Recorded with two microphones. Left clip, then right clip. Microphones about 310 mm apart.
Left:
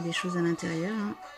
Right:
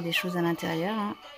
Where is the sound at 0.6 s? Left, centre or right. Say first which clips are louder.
Right 3 dB; right.